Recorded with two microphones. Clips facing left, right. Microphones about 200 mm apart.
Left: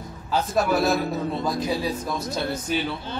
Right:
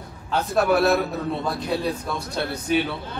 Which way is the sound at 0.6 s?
65° right (ahead or behind).